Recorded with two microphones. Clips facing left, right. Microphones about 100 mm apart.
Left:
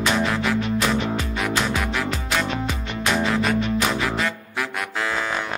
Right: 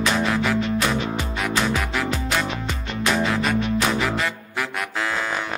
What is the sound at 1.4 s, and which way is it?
Music, centre (ahead or behind).